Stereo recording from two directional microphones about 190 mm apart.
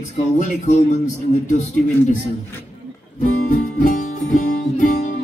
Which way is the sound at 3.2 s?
40° left (ahead or behind).